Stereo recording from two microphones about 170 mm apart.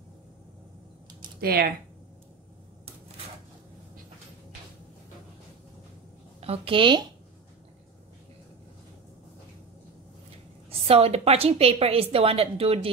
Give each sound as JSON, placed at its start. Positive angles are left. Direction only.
{"t": 1.4, "sound": "speech", "side_deg": -65}
{"t": 6.4, "sound": "a woman's voice", "side_deg": -35}
{"t": 10.7, "sound": "a woman's voice", "side_deg": -35}